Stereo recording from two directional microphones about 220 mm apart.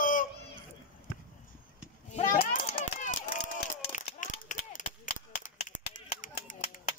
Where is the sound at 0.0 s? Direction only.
40° left (ahead or behind).